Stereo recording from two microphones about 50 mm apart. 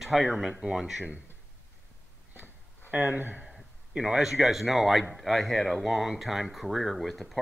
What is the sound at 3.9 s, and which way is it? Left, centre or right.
Speech, centre.